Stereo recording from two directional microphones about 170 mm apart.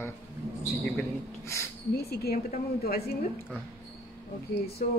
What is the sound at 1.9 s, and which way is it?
Speech, 65° left (ahead or behind).